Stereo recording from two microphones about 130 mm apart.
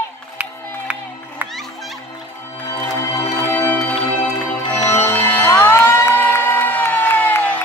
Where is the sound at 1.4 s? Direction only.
15° right (ahead or behind).